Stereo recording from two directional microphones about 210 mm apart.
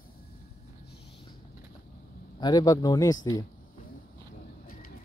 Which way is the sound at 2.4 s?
15° left (ahead or behind).